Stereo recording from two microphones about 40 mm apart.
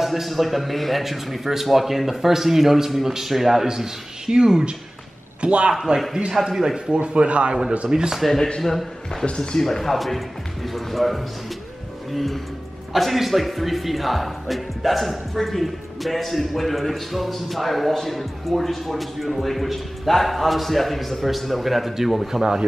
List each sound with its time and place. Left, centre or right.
0.0 s a man's voice: centre
5.4 s a man's voice: right
6.3 s a man's voice: centre
6.9 s speech: right
7.9 s a man's voice: centre
8.2 s speech: centre
9.2 s a man's voice: left
9.6 s speech: centre